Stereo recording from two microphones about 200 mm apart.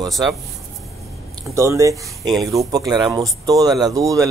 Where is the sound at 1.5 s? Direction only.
15° right (ahead or behind).